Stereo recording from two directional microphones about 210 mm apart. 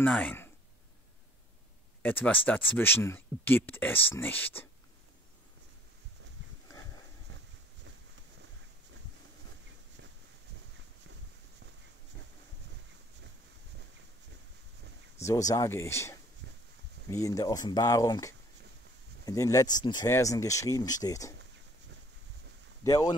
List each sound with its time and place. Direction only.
0.0 s speech: 10° left (ahead or behind)
2.0 s speech: 10° left (ahead or behind)
15.2 s speech: 15° left (ahead or behind)
22.8 s speech: 15° left (ahead or behind)